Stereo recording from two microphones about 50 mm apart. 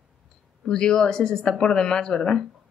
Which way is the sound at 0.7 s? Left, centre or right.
Centre.